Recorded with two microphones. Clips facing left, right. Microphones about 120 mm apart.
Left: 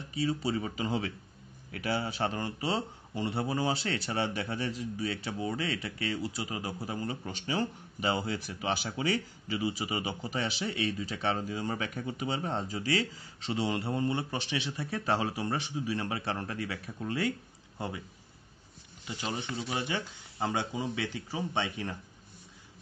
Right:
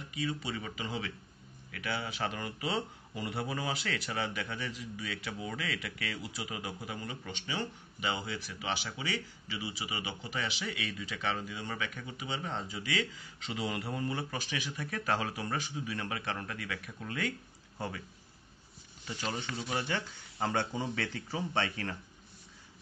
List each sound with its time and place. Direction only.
0.1 s speech: 30° left (ahead or behind)
19.4 s speech: 20° left (ahead or behind)